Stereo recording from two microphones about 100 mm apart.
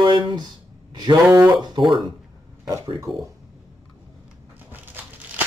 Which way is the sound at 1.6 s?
50° right (ahead or behind).